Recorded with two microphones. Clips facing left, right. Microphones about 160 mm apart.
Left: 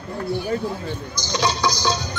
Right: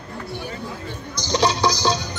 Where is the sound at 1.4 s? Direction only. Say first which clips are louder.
Right 2 dB; 30° right (ahead or behind).